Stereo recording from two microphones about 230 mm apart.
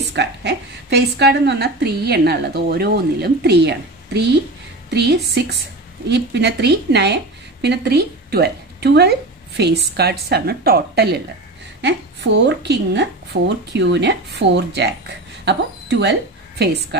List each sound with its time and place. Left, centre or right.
0.1 s a woman's voice: right